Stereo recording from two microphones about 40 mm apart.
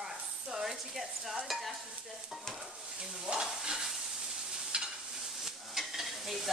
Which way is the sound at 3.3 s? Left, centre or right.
Centre.